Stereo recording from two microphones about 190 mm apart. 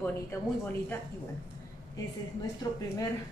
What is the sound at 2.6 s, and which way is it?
Speech, 20° left (ahead or behind).